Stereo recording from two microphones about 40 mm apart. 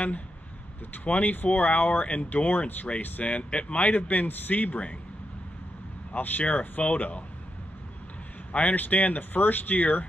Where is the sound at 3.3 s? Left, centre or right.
Left.